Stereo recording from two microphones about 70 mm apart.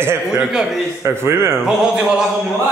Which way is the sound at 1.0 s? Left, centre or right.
Right.